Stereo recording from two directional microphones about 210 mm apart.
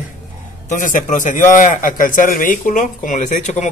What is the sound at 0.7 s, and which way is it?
A man's voice, 40° left (ahead or behind).